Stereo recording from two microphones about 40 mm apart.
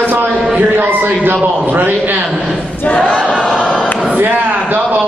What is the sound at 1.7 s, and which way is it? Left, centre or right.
Speech, right.